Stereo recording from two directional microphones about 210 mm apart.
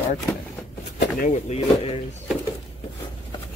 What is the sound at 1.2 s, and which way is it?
Speech, 35° left (ahead or behind).